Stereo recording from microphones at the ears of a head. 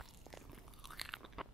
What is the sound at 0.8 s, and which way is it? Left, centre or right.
Crunch, centre.